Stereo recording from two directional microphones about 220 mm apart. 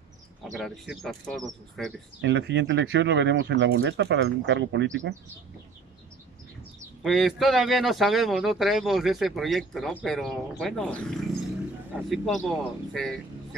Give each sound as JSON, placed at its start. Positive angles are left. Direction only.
{"t": 0.4, "sound": "speech", "side_deg": 0}
{"t": 2.2, "sound": "speech", "side_deg": -55}
{"t": 7.0, "sound": "speech", "side_deg": 0}